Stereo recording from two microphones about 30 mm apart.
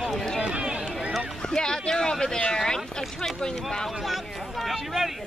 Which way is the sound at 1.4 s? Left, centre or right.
Left.